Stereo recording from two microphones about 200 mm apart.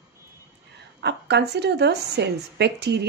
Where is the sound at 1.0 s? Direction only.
55° right (ahead or behind).